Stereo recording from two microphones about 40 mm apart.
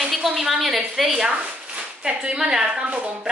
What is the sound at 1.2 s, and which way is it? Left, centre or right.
A woman's voice, right.